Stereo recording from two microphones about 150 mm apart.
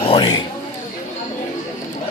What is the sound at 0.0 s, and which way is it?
Speech, 35° left (ahead or behind).